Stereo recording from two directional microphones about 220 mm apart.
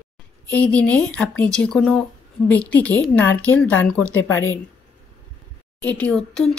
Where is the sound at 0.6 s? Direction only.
5° left (ahead or behind).